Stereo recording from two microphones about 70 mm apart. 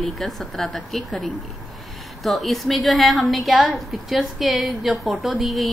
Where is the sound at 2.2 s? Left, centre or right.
Centre.